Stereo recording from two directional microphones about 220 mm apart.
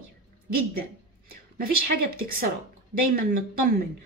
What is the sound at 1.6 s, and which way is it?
Speech, 40° right (ahead or behind).